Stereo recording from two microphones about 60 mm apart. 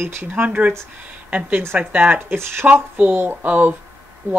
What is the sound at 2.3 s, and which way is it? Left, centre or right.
Speech, right.